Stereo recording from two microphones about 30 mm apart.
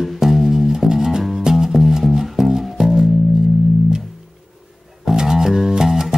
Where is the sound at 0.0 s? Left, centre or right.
Centre.